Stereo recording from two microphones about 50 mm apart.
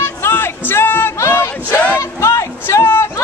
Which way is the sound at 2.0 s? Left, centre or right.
Left.